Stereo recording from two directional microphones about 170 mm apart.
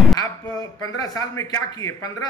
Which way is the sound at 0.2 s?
20° left (ahead or behind).